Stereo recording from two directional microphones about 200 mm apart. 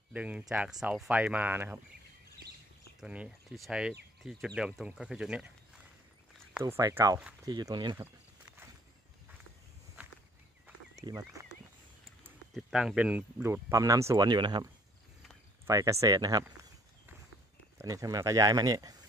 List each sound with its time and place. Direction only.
0.1 s speech: 5° right (ahead or behind)
3.0 s speech: 5° right (ahead or behind)
6.6 s speech: 15° right (ahead or behind)
7.4 s speech: 20° right (ahead or behind)
11.0 s speech: 15° right (ahead or behind)
12.5 s speech: 5° right (ahead or behind); by 16.4 s 20° right (ahead or behind)
17.7 s speech: 15° right (ahead or behind)